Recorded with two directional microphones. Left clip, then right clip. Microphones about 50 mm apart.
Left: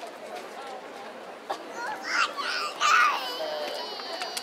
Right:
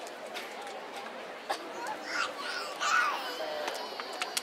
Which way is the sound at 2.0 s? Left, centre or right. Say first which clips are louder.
Left 9 dB; centre.